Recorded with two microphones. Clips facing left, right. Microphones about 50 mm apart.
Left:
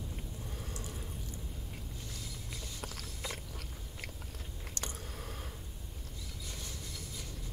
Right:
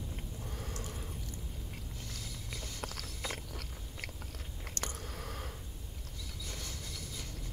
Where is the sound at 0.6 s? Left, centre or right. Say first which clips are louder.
Right 3 dB; right.